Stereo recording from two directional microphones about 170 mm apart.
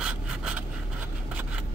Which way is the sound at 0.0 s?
5° right (ahead or behind).